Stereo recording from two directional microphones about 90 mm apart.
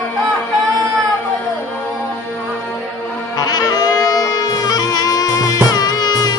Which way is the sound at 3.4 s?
45° left (ahead or behind).